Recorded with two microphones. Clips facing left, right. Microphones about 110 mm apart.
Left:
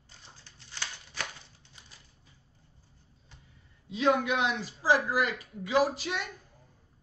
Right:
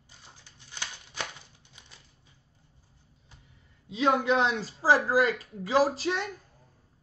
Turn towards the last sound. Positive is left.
turn(degrees=-35)  # may be behind; listen again after turning